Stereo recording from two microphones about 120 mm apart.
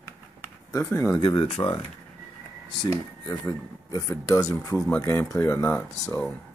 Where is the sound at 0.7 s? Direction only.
25° left (ahead or behind).